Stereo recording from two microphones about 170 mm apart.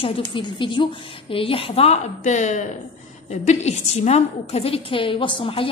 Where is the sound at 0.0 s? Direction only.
30° left (ahead or behind).